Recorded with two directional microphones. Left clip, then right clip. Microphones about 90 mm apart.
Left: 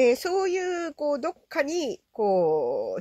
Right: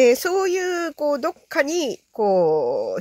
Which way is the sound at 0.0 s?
35° right (ahead or behind).